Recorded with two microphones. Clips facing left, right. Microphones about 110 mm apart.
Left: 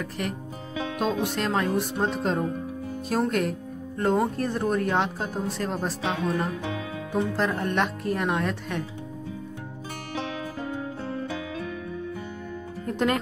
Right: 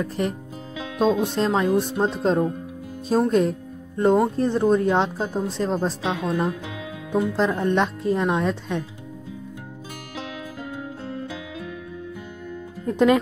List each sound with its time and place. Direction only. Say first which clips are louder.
0.9 s speech: right 7 dB; 25° right (ahead or behind)
12.8 s speech: right 7 dB; 20° right (ahead or behind)